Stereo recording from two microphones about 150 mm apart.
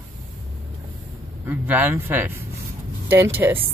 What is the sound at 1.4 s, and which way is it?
Speech, 15° right (ahead or behind).